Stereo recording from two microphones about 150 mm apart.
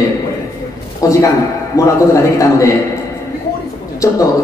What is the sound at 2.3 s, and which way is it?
Speech, 20° left (ahead or behind).